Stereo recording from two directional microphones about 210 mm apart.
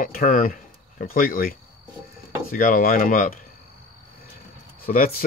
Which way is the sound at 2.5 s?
40° left (ahead or behind).